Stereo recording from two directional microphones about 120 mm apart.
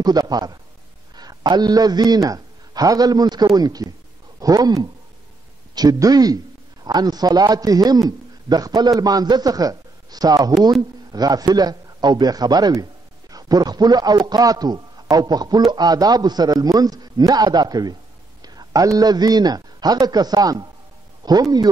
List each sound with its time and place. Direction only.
0.0 s a man's voice: 35° right (ahead or behind)